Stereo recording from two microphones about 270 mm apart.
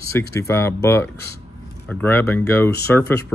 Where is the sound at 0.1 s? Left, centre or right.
Centre.